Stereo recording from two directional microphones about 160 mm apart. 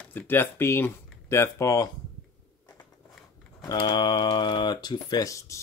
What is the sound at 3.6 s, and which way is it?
Speech, 25° left (ahead or behind).